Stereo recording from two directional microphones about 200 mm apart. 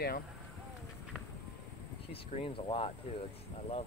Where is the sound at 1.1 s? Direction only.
Centre (ahead or behind).